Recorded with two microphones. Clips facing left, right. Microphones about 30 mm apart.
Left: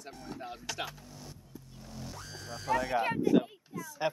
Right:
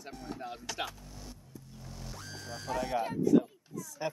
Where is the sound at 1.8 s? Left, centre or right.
Centre.